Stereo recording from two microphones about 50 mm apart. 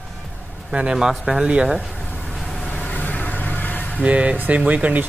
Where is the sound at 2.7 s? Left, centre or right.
Left.